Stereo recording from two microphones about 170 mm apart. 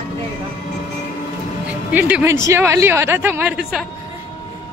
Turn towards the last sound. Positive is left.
turn(degrees=-10)  # may be behind; listen again after turning